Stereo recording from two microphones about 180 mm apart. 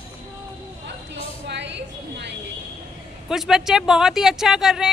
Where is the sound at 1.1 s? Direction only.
80° right.